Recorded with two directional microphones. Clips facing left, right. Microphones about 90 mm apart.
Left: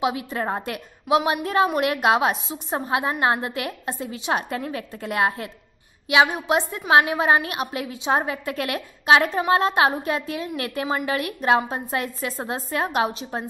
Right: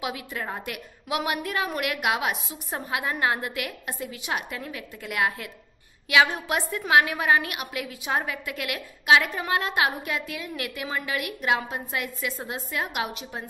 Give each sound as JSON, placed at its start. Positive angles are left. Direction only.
{"t": 0.0, "sound": "a woman's voice", "side_deg": 30}
{"t": 6.0, "sound": "a woman's voice", "side_deg": 20}